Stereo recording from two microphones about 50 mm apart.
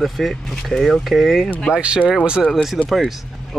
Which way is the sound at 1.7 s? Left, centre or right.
Right.